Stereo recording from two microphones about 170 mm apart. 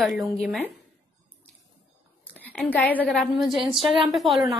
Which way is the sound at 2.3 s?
10° left (ahead or behind).